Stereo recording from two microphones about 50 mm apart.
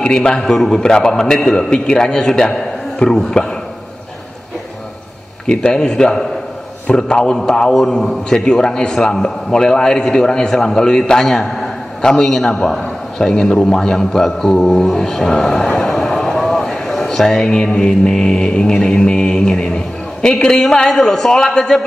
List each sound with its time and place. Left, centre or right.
0.0 s a man's voice: centre
5.5 s a man's voice: centre